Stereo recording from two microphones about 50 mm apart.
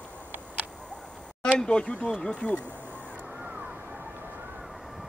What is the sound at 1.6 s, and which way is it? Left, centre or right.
Speech, centre.